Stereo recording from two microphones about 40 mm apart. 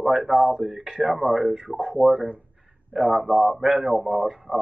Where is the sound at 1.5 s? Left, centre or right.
Right.